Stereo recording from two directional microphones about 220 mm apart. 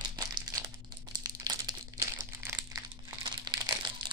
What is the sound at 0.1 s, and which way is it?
Crumpling, 15° right (ahead or behind).